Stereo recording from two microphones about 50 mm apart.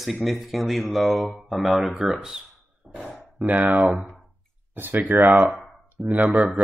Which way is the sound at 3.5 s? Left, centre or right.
Right.